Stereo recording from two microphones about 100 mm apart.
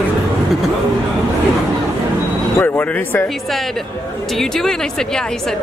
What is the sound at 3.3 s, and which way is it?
A woman's voice, centre (ahead or behind).